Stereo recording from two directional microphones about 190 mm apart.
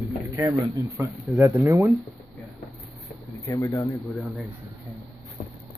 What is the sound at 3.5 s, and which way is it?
Speech, 15° left (ahead or behind).